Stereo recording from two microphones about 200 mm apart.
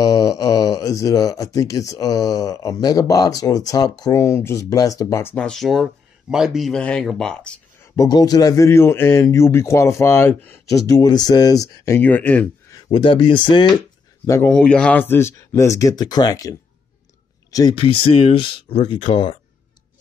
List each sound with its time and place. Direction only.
0.0 s speech: 20° left (ahead or behind)
12.7 s speech: 25° left (ahead or behind)
14.2 s speech: 10° left (ahead or behind); by 19.3 s 25° left (ahead or behind)